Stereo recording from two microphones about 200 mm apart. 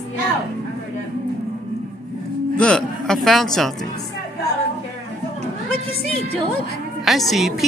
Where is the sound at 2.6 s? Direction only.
5° left (ahead or behind).